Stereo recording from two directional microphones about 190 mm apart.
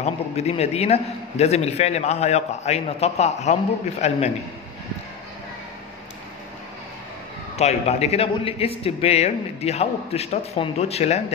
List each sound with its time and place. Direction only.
0.0 s a man's voice: 35° left (ahead or behind)
7.5 s a man's voice: 35° left (ahead or behind)